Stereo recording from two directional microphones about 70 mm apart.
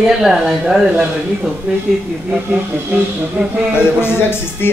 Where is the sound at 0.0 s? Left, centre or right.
Centre.